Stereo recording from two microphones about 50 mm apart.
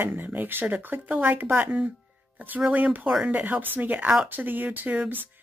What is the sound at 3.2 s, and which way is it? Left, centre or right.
A woman's voice, right.